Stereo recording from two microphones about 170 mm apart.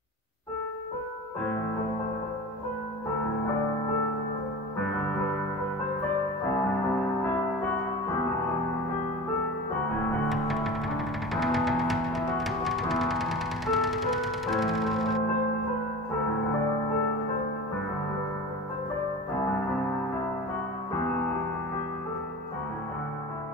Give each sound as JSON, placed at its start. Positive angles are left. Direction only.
{"t": 10.2, "sound": "music", "side_deg": 0}